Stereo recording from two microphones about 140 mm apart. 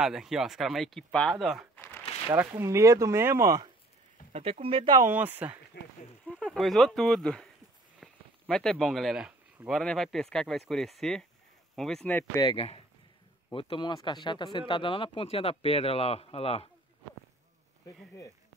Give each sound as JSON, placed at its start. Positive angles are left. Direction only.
{"t": 0.0, "sound": "speech", "side_deg": -5}
{"t": 2.5, "sound": "speech", "side_deg": -20}
{"t": 4.3, "sound": "speech", "side_deg": -45}
{"t": 5.0, "sound": "speech", "side_deg": -10}
{"t": 6.3, "sound": "speech", "side_deg": 5}
{"t": 12.5, "sound": "speech", "side_deg": 45}